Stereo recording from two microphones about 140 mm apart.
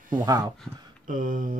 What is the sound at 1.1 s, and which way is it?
Speech, 75° right (ahead or behind).